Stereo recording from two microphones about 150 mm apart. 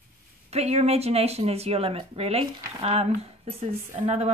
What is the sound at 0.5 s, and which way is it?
A woman's voice, 45° right (ahead or behind).